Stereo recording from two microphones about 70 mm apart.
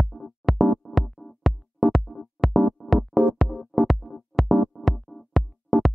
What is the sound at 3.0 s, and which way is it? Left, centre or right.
Music, right.